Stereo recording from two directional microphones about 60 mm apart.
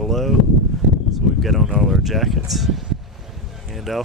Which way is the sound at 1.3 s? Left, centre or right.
Centre.